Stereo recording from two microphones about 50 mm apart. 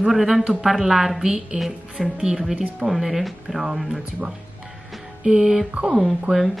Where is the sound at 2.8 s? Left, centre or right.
Centre.